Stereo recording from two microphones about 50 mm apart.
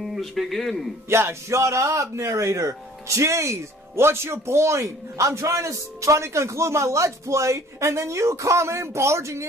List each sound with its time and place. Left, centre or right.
0.0 s a man's voice: centre
1.0 s speech: right